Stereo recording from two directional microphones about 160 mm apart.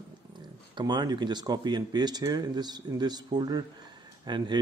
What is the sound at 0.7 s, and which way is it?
Speech, 25° right (ahead or behind).